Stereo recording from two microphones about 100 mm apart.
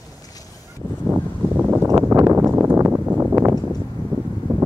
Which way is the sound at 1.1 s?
15° right (ahead or behind).